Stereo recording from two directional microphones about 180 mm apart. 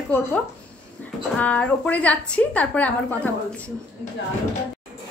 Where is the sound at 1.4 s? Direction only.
10° left (ahead or behind).